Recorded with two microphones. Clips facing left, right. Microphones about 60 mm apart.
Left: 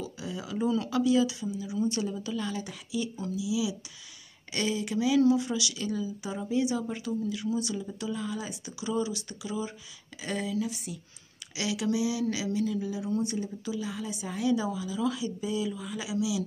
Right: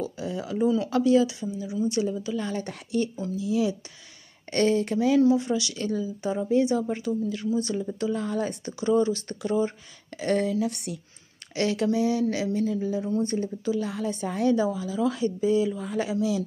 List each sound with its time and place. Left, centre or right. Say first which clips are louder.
0.0 s a sound: right 6 dB; right
0.6 s a woman's voice: right 5 dB; right
0.8 s a woman's voice: right 3 dB; right
2.5 s speech: right 6 dB; right
5.2 s speech: right 3 dB; right
11.5 s speech: right 5 dB; right